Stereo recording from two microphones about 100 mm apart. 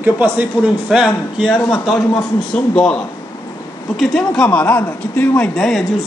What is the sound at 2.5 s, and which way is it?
A man's voice, 10° left (ahead or behind).